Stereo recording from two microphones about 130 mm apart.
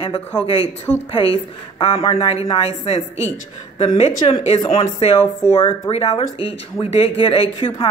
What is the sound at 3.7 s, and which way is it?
Speech, 50° left (ahead or behind).